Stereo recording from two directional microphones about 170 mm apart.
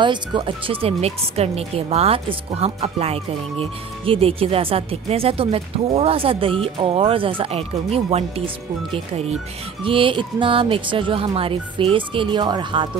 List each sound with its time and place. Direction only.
0.0 s a woman's voice: 25° right (ahead or behind)
9.8 s a woman's voice: 30° right (ahead or behind)